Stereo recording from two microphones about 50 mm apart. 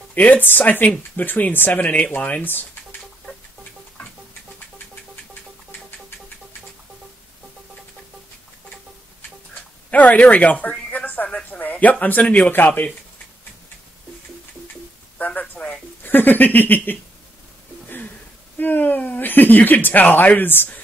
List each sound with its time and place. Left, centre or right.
0.1 s speech: left
9.8 s speech: left
15.1 s a sound: left
15.6 s speech: left
18.6 s speech: left